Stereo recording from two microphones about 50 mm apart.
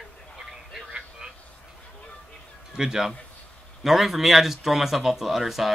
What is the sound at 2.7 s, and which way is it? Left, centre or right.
Speech, centre.